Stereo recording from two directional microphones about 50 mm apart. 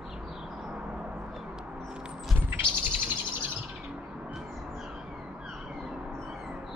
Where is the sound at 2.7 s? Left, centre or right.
Right.